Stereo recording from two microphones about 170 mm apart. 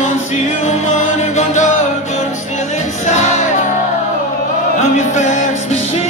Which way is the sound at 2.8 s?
40° left (ahead or behind).